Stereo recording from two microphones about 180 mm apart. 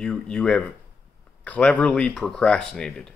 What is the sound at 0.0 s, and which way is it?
Speech, 5° left (ahead or behind).